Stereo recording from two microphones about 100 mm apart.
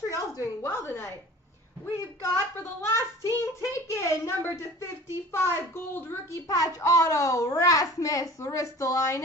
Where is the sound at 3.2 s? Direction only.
30° left (ahead or behind).